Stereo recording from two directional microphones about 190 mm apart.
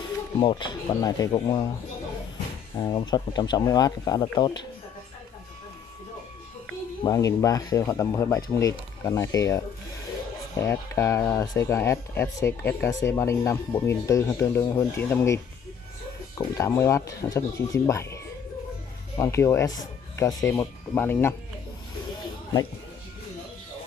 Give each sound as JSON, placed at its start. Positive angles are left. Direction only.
{"t": 0.4, "sound": "speech", "side_deg": 25}
{"t": 2.8, "sound": "speech", "side_deg": 20}
{"t": 7.0, "sound": "speech", "side_deg": 20}
{"t": 16.5, "sound": "speech", "side_deg": 15}